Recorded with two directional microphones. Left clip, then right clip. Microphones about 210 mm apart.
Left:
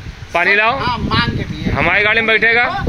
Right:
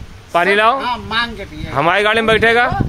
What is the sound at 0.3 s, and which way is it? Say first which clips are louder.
Speech: right 1 dB; 25° right (ahead or behind).